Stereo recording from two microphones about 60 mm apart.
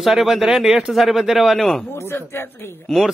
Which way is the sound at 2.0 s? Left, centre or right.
Left.